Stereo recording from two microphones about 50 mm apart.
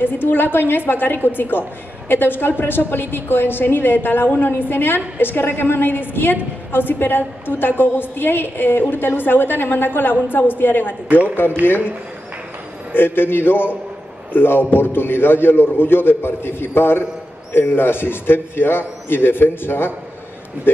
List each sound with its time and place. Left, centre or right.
0.0 s a man's voice: left
11.1 s a man's voice: right
12.9 s a man's voice: left